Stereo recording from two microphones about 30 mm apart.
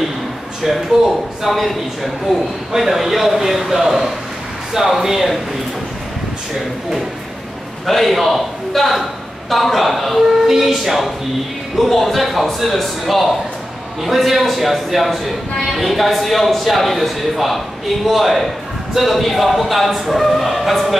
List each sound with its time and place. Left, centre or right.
0.9 s speech: right
1.5 s a man's voice: centre
2.8 s a man's voice: centre
7.8 s a man's voice: centre